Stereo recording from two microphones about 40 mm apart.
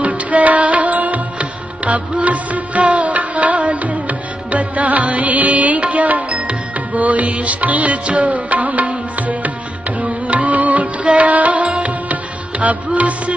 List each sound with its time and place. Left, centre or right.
0.0 s music: right